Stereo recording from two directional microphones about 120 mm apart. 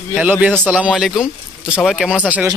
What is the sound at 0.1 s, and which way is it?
Speech, 10° right (ahead or behind).